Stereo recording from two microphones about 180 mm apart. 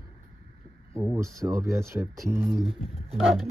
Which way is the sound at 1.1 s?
15° right (ahead or behind).